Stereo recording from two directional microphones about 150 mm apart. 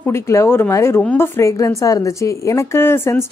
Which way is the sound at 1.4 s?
20° left (ahead or behind).